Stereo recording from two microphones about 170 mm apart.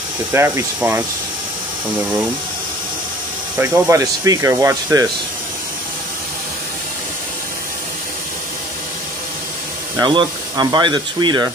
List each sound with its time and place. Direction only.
0.3 s speech: 15° right (ahead or behind)
3.5 s speech: 10° right (ahead or behind)
9.9 s speech: 25° right (ahead or behind)